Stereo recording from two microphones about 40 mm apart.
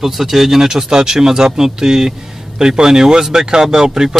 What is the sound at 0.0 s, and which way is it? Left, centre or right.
Speech, centre.